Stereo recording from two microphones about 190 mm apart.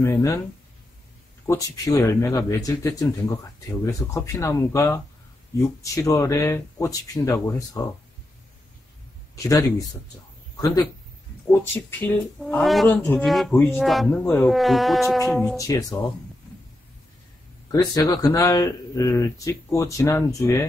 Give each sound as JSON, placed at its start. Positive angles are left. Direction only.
{"t": 0.0, "sound": "speech", "side_deg": 15}
{"t": 1.5, "sound": "speech", "side_deg": 15}
{"t": 9.3, "sound": "speech", "side_deg": 20}
{"t": 13.7, "sound": "insect", "side_deg": 0}
{"t": 14.2, "sound": "speech", "side_deg": 10}
{"t": 14.5, "sound": "insect", "side_deg": 0}
{"t": 15.5, "sound": "speech", "side_deg": 20}
{"t": 17.6, "sound": "speech", "side_deg": 20}